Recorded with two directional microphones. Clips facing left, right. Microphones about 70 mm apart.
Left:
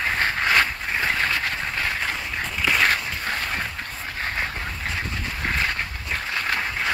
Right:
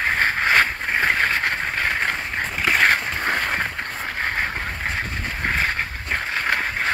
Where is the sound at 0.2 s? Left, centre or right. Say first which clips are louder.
Right 2 dB; right.